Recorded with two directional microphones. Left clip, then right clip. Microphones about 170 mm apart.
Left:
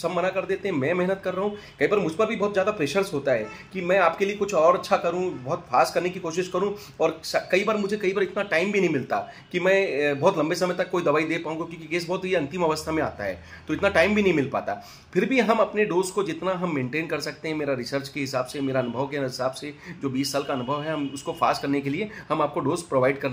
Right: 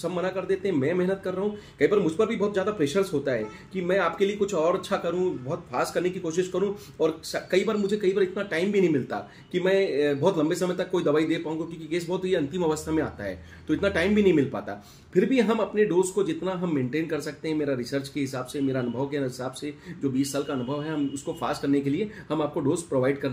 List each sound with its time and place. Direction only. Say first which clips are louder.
0.0 s speech: left 4 dB; 20° right (ahead or behind)